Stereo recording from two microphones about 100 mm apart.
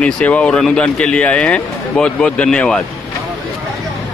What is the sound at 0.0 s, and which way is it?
Speech, 15° left (ahead or behind).